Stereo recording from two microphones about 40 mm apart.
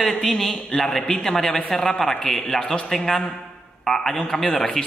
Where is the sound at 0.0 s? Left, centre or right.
Centre.